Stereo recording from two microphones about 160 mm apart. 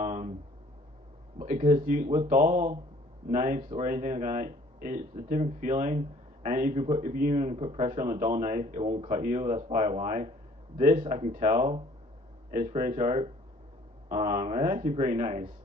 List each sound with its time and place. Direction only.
0.0 s a sound: 45° right (ahead or behind)
1.4 s speech: 45° right (ahead or behind)
3.5 s speech: 35° right (ahead or behind)
3.8 s speech: 45° right (ahead or behind)
11.1 s speech: 40° right (ahead or behind)
12.4 s speech: 50° right (ahead or behind)